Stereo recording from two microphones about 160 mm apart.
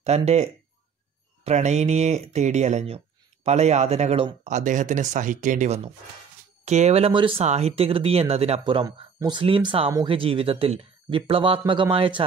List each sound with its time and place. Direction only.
0.0 s speech: 40° right (ahead or behind)